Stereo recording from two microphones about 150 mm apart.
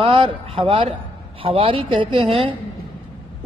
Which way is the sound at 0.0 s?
40° right (ahead or behind).